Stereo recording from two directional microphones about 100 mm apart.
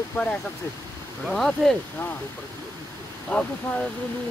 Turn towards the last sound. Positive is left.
turn(degrees=10)  # may be behind; listen again after turning